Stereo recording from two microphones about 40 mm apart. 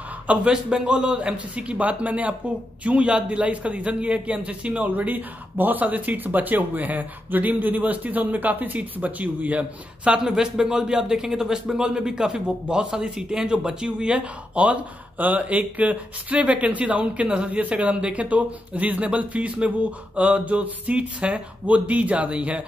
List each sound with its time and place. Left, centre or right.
0.5 s a man's voice: right
10.0 s a man's voice: right
14.6 s speech: right